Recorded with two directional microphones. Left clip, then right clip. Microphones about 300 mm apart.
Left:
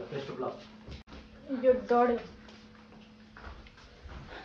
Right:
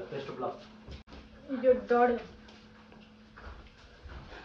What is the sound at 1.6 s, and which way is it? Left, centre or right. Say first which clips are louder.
Speech: even; centre.